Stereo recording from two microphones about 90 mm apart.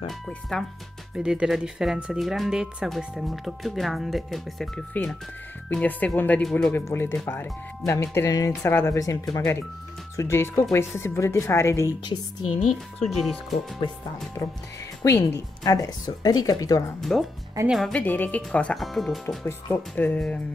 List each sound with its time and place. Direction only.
1.1 s speech: 10° right (ahead or behind)
5.7 s a woman's voice: 15° left (ahead or behind); by 8.5 s 40° left (ahead or behind)
8.6 s a woman's voice: 30° left (ahead or behind)
10.1 s a woman's voice: 30° left (ahead or behind)
12.1 s a woman's voice: 65° left (ahead or behind)
13.0 s speech: centre (ahead or behind)
14.4 s speech: 30° left (ahead or behind)
15.6 s speech: 45° left (ahead or behind)
17.0 s speech: centre (ahead or behind)
17.9 s speech: 20° left (ahead or behind)
18.8 s speech: centre (ahead or behind)
19.2 s speech: 25° left (ahead or behind)